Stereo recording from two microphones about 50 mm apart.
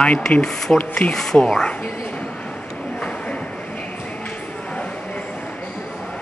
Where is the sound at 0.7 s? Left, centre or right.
Centre.